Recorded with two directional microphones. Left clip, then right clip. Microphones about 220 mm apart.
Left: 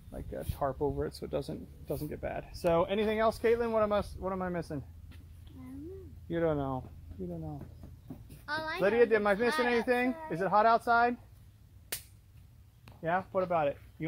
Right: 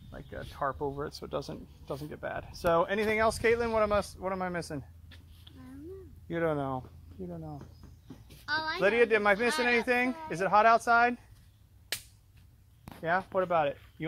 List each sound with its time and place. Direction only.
0.1 s a sound: centre (ahead or behind)
1.2 s speech: 10° right (ahead or behind)
2.7 s speech: 30° right (ahead or behind)
6.2 s speech: 35° right (ahead or behind)
8.5 s a woman's voice: 15° left (ahead or behind)
8.7 s speech: 35° right (ahead or behind)
13.0 s speech: 55° right (ahead or behind)